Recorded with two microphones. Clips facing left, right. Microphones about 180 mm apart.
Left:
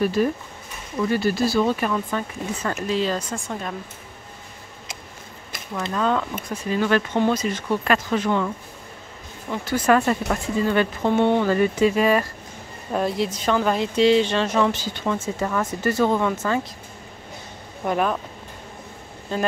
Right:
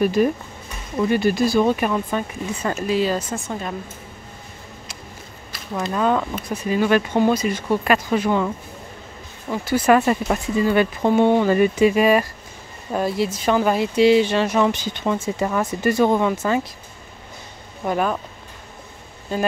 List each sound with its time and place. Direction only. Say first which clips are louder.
0.0 s speech: right 3 dB; 15° right (ahead or behind)
5.8 s speech: right 3 dB; 10° right (ahead or behind)
9.5 s speech: right 3 dB; 10° right (ahead or behind)
17.8 s speech: right 1 dB; centre (ahead or behind)
19.3 s speech: right 2 dB; 5° right (ahead or behind)